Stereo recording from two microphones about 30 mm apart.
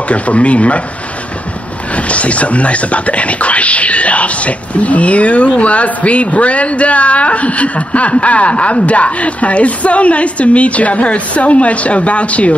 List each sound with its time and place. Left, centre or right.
0.1 s speech: left
2.0 s speech: left